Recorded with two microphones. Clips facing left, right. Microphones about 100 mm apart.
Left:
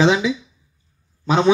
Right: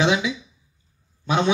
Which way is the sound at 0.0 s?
30° left (ahead or behind).